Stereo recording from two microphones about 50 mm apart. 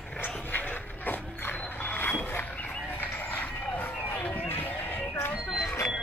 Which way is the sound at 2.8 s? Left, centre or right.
Left.